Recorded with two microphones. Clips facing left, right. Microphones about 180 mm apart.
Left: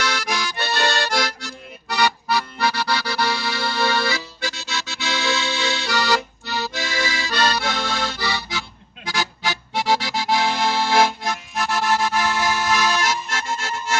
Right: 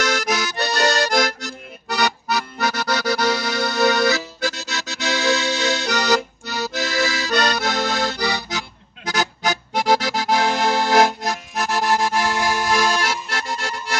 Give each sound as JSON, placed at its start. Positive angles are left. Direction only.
{"t": 0.0, "sound": "accordion", "side_deg": -45}